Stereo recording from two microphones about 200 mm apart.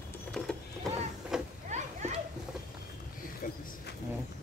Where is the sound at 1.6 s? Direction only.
35° right (ahead or behind).